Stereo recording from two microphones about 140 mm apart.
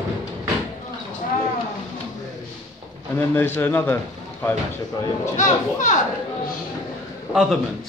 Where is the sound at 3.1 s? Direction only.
15° left (ahead or behind).